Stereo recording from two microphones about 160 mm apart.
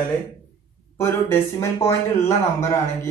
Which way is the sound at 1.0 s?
15° left (ahead or behind).